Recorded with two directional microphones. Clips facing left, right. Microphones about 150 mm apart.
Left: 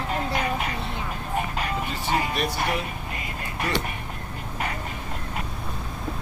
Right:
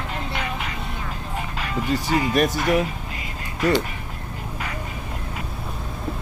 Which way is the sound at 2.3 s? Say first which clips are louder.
Right 7 dB; 45° right (ahead or behind).